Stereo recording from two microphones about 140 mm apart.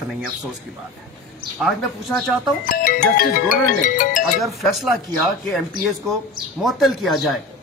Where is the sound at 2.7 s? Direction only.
85° left; by 4.2 s 70° left (ahead or behind).